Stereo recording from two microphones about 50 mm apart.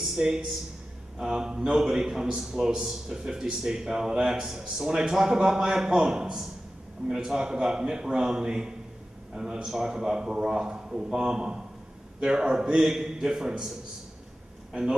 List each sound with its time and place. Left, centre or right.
0.0 s a man's voice: centre